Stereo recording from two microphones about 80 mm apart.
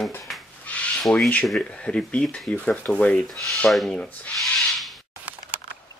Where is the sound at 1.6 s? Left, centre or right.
Centre.